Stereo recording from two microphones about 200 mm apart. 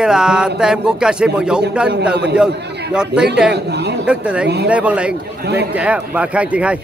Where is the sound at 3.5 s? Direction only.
55° right (ahead or behind).